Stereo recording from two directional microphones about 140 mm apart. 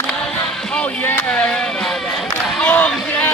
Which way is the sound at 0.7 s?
10° left (ahead or behind).